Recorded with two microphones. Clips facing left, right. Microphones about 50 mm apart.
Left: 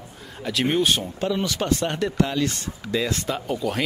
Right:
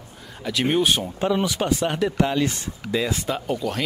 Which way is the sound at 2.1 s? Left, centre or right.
Centre.